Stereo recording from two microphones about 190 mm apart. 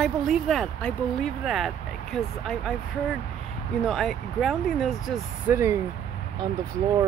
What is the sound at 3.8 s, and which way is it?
Speech, centre (ahead or behind).